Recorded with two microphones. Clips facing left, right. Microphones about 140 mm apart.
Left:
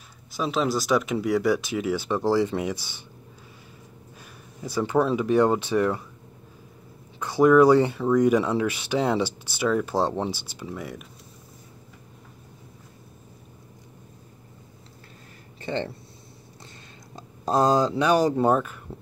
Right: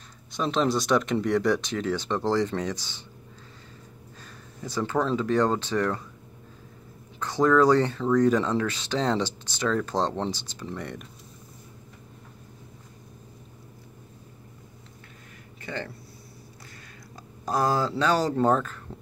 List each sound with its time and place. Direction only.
0.3 s speech: 5° left (ahead or behind)
4.2 s speech: 10° left (ahead or behind)
7.2 s speech: 10° left (ahead or behind)
15.6 s speech: 25° left (ahead or behind)
17.1 s speech: 25° left (ahead or behind)